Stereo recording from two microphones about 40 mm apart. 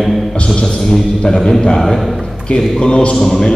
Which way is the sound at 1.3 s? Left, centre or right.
Centre.